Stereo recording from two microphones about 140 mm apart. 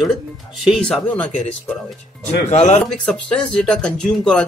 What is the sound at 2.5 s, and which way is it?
Speech, 50° left (ahead or behind).